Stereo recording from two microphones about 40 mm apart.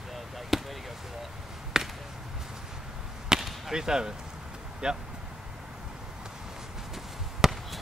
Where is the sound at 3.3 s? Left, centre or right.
Centre.